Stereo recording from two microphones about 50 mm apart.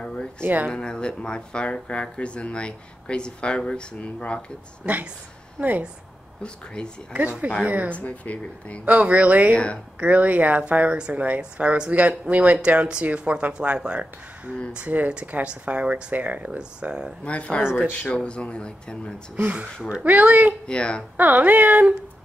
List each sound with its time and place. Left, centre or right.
0.0 s a sound: centre
0.4 s speech: right
0.7 s speech: centre
4.9 s speech: right
6.4 s speech: centre
7.2 s speech: right
7.9 s speech: left
8.8 s speech: right
17.2 s speech: left
17.6 s speech: centre
18.1 s speech: left
19.3 s speech: right
20.6 s speech: centre
21.2 s speech: right